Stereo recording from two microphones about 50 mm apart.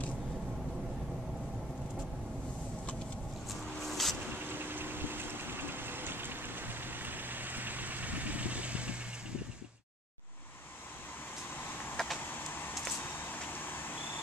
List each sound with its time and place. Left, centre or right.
3.8 s vehicle: centre
4.2 s vehicle: right
12.0 s a sound: centre